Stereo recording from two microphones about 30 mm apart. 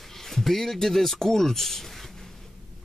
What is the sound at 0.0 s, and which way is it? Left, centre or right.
Speech, centre.